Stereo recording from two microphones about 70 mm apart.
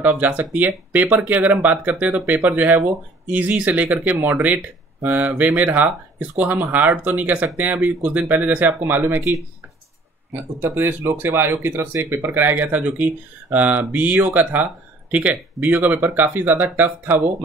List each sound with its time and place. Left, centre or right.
0.0 s speech: right
10.3 s speech: right